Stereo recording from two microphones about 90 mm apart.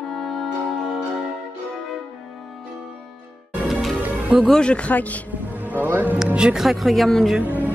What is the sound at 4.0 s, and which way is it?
Music, 15° right (ahead or behind).